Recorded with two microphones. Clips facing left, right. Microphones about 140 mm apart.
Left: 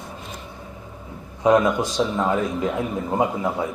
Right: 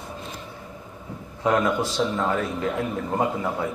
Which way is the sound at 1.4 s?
15° left (ahead or behind).